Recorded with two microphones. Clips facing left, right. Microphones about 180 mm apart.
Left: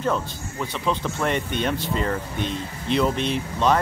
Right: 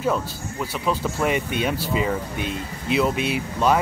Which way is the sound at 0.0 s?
5° right (ahead or behind).